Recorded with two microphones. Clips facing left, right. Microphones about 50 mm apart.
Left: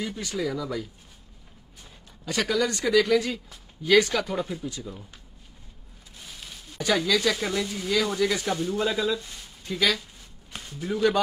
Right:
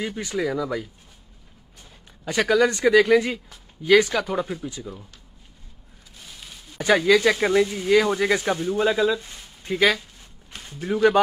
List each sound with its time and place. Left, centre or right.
0.0 s speech: right
2.2 s speech: right
6.1 s a sound: centre
6.8 s speech: right
9.0 s speech: centre
9.3 s a sound: right
10.6 s speech: right